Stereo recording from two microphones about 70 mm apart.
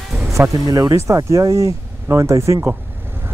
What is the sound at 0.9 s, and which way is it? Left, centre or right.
Speech, right.